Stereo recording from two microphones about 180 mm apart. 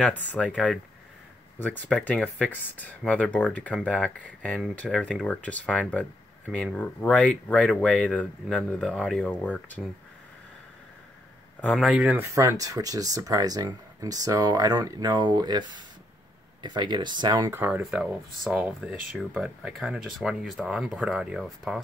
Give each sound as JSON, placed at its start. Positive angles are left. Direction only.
{"t": 0.0, "sound": "speech", "side_deg": 10}
{"t": 1.6, "sound": "speech", "side_deg": 10}
{"t": 11.6, "sound": "speech", "side_deg": 0}
{"t": 12.4, "sound": "speech", "side_deg": -20}
{"t": 17.5, "sound": "speech", "side_deg": -10}